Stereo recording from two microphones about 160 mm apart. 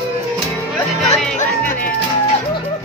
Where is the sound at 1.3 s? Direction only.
60° left (ahead or behind).